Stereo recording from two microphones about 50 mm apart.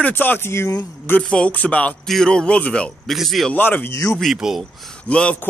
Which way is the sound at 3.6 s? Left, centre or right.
Left.